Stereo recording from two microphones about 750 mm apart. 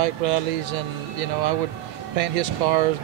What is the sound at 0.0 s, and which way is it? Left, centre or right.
Speech, right.